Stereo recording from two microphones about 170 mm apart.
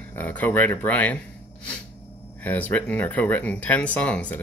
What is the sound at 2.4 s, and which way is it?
Speech, 10° left (ahead or behind).